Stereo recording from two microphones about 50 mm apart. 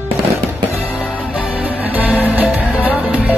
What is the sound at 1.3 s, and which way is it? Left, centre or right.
Music, right.